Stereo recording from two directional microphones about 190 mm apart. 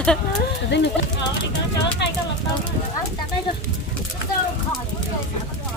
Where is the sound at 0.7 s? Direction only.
65° left (ahead or behind).